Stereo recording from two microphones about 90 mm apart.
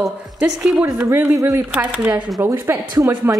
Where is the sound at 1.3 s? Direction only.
35° right (ahead or behind).